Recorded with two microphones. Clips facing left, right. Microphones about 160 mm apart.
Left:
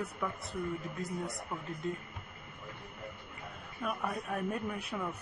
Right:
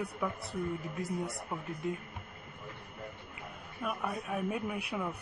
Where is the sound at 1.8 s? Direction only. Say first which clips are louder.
Right 1 dB; 15° right (ahead or behind).